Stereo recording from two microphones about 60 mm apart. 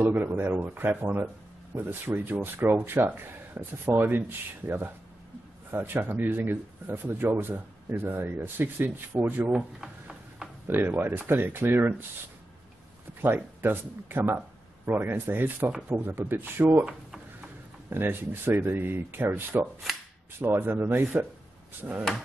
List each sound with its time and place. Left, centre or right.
0.0 s speech: right
9.5 s a sound: centre
10.7 s speech: right
13.2 s speech: right
17.8 s speech: right